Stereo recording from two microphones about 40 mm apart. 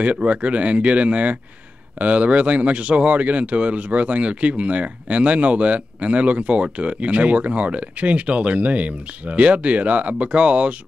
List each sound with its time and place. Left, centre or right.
0.0 s speech: right